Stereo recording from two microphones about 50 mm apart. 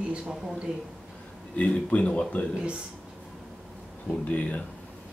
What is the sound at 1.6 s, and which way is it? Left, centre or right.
Speech, left.